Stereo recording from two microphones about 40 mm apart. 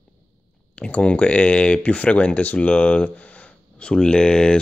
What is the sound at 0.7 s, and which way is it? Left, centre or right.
Speech, left.